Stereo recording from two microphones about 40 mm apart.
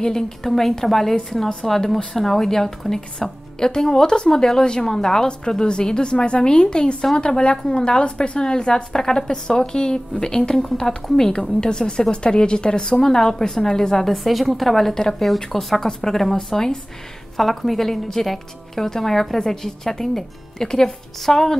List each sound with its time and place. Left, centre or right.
0.0 s a woman's voice: centre
11.1 s a woman's voice: centre
14.1 s a woman's voice: centre